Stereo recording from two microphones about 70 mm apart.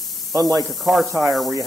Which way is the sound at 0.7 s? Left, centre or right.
Centre.